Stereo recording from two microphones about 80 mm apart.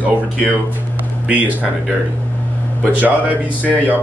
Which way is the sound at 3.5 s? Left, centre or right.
Left.